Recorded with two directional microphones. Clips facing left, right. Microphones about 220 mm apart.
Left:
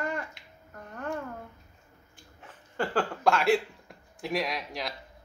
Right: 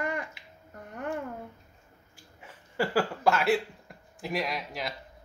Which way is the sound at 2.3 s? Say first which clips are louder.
Right 2 dB; 10° right (ahead or behind).